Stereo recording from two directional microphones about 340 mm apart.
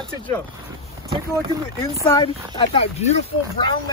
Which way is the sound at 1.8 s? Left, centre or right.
Centre.